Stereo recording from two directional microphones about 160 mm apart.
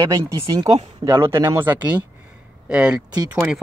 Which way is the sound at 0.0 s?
25° right (ahead or behind).